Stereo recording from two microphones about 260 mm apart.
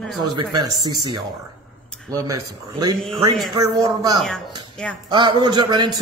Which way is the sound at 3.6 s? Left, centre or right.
Centre.